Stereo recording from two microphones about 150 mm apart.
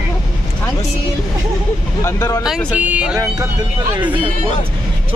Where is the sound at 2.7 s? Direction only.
10° right (ahead or behind).